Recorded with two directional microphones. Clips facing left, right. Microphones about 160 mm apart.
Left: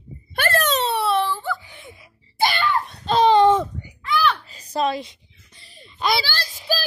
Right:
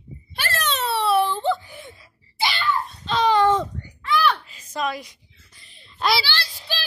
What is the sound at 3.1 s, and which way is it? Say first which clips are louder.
Babbling: left 4 dB; 30° left (ahead or behind).